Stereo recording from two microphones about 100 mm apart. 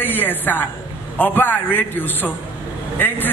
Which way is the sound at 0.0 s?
20° left (ahead or behind).